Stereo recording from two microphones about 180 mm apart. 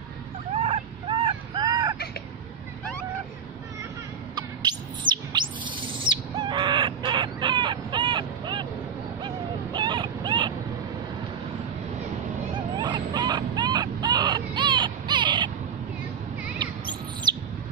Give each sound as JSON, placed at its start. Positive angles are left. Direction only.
{"t": 0.6, "sound": "vehicle", "side_deg": -35}
{"t": 4.4, "sound": "bird", "side_deg": -25}
{"t": 9.2, "sound": "a sound", "side_deg": -25}
{"t": 12.5, "sound": "vehicle", "side_deg": -25}
{"t": 16.5, "sound": "chirp", "side_deg": -25}